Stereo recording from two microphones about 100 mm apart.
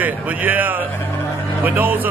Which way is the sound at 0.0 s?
15° right (ahead or behind).